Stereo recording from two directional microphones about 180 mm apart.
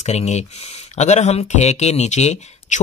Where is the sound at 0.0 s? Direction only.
40° left (ahead or behind).